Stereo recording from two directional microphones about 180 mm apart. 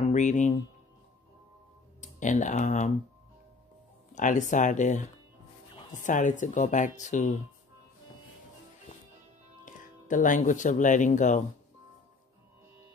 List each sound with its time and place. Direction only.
0.1 s speech: 40° left (ahead or behind)
2.0 s speech: 45° left (ahead or behind)
4.1 s speech: 45° left (ahead or behind)
9.8 s speech: 45° left (ahead or behind)